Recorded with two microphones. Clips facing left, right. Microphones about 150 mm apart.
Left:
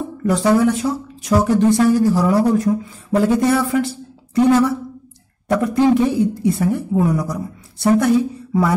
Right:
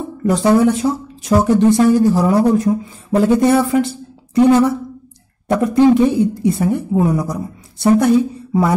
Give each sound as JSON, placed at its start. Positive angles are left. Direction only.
{"t": 0.2, "sound": "speech", "side_deg": -25}